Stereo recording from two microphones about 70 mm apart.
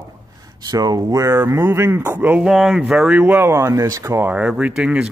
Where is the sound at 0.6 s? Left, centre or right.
Right.